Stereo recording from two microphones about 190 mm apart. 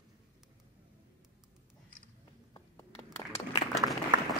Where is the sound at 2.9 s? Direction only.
30° left (ahead or behind).